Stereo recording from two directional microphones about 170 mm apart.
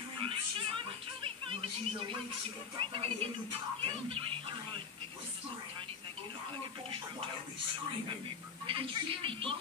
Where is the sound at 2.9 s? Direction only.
35° right (ahead or behind).